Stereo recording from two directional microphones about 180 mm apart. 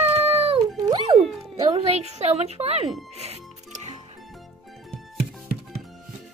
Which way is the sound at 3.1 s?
35° right (ahead or behind).